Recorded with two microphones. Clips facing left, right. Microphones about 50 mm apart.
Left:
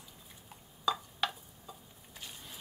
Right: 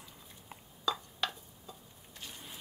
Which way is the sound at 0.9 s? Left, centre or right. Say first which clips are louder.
Left 2 dB; centre.